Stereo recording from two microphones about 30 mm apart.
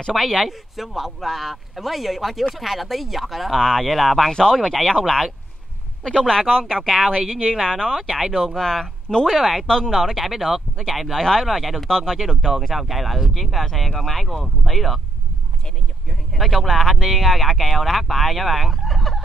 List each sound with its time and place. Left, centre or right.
0.1 s speech: centre
3.5 s speech: centre
3.8 s speech: centre
4.3 s speech: left
4.6 s speech: centre
9.7 s speech: left
10.2 s speech: centre
11.1 s speech: centre
11.4 s speech: centre
11.8 s speech: centre
16.1 s speech: centre